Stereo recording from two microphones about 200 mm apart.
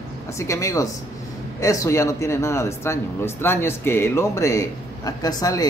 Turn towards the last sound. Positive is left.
turn(degrees=20)  # may be behind; listen again after turning